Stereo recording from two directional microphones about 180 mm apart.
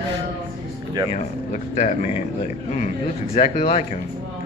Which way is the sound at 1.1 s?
40° left (ahead or behind).